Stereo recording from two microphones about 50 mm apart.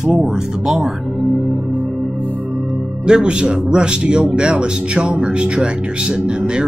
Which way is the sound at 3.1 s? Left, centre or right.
Centre.